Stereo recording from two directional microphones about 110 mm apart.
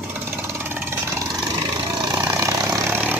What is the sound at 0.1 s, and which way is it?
Vehicle, 20° right (ahead or behind).